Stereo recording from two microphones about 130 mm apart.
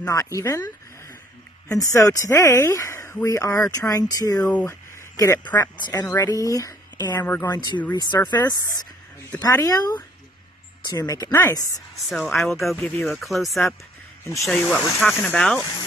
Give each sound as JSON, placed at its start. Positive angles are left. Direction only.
{"t": 0.0, "sound": "speech", "side_deg": 25}
{"t": 4.5, "sound": "speech", "side_deg": 15}
{"t": 12.1, "sound": "speech", "side_deg": 0}
{"t": 12.7, "sound": "speech", "side_deg": 15}
{"t": 13.0, "sound": "speech", "side_deg": 0}